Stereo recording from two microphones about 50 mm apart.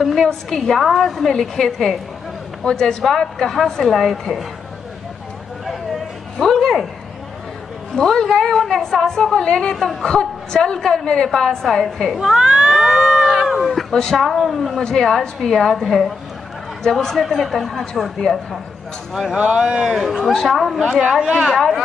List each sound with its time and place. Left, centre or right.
0.0 s a woman's voice: centre
6.3 s a sound: centre
7.9 s a woman's voice: centre
12.2 s cat: centre
14.1 s speech: centre
14.8 s a woman's voice: centre
16.8 s speech: centre
19.3 s a man's voice: centre
21.5 s speech: centre